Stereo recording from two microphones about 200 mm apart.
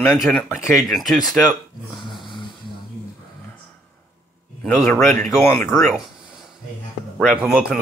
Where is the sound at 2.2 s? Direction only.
25° left (ahead or behind).